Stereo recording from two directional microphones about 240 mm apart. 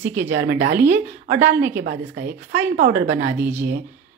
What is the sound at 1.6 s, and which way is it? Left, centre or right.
Speech, centre.